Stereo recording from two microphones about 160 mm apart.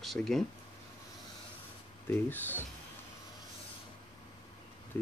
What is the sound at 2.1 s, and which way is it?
Speech, 10° left (ahead or behind).